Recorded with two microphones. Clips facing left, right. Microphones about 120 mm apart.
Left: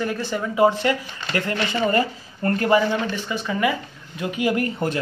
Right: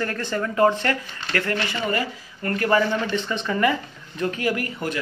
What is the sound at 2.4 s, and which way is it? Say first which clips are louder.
Speech: left 3 dB; 30° left (ahead or behind).